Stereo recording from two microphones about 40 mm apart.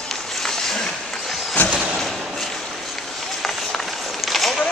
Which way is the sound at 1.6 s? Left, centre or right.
Left.